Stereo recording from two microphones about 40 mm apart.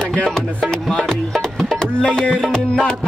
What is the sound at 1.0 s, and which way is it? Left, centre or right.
Music, centre.